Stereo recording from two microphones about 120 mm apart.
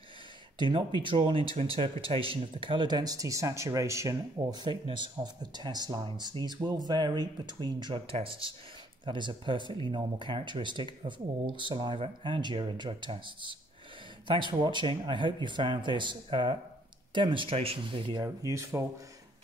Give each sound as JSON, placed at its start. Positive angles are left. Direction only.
{"t": 0.6, "sound": "speech", "side_deg": -40}
{"t": 4.6, "sound": "speech", "side_deg": -40}
{"t": 18.2, "sound": "speech", "side_deg": -25}